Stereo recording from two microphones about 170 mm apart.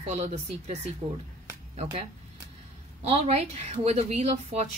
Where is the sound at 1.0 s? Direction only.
30° right (ahead or behind).